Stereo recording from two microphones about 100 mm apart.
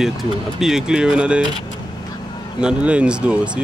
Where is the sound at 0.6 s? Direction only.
5° right (ahead or behind).